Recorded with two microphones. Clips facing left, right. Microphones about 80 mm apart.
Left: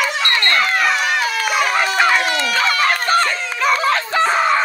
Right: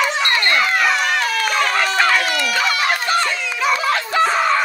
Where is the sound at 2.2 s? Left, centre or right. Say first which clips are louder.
Left 1 dB; left.